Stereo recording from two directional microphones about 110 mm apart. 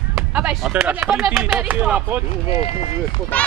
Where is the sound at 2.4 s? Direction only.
65° left (ahead or behind).